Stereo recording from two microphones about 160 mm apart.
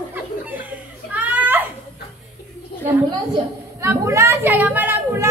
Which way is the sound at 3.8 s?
15° right (ahead or behind).